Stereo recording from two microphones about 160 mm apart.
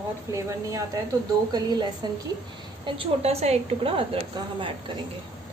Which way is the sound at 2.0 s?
25° right (ahead or behind).